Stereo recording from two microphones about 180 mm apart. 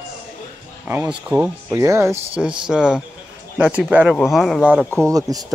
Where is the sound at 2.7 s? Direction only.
5° right (ahead or behind).